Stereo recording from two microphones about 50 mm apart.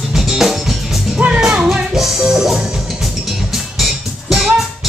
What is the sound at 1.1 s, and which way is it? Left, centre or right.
Music, centre.